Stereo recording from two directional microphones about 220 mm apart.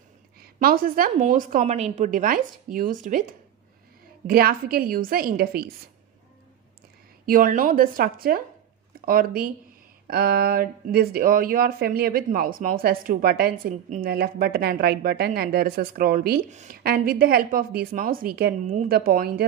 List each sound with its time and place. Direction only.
0.4 s a woman's voice: 45° right (ahead or behind)
7.2 s a woman's voice: 40° right (ahead or behind)